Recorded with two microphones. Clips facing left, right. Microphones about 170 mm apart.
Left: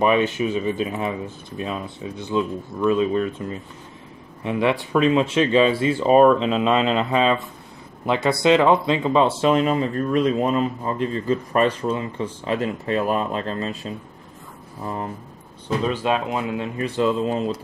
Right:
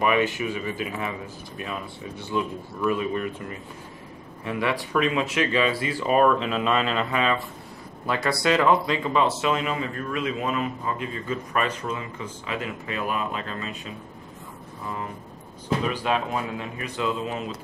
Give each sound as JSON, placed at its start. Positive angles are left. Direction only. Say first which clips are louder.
{"t": 0.0, "sound": "speech", "louder": "left 4 dB", "side_deg": 25}
{"t": 15.9, "sound": "speech", "louder": "left 3 dB", "side_deg": 20}
{"t": 16.7, "sound": "speech", "louder": "left 8 dB", "side_deg": 35}